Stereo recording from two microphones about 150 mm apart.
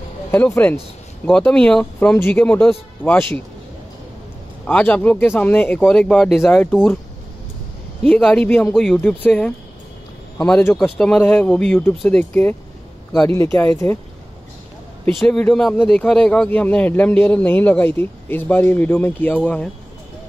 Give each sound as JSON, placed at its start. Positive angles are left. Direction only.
{"t": 0.3, "sound": "speech", "side_deg": 10}
{"t": 4.6, "sound": "speech", "side_deg": 10}
{"t": 6.3, "sound": "speech", "side_deg": 15}
{"t": 8.0, "sound": "speech", "side_deg": 10}
{"t": 15.1, "sound": "speech", "side_deg": 5}